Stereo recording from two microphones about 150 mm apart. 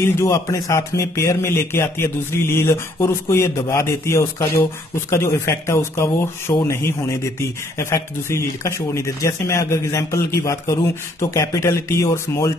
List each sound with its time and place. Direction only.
0.2 s speech: 20° left (ahead or behind)